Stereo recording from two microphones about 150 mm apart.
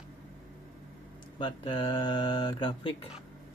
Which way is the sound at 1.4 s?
35° left (ahead or behind).